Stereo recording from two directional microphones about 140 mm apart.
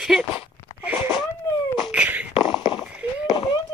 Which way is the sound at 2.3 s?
35° left (ahead or behind).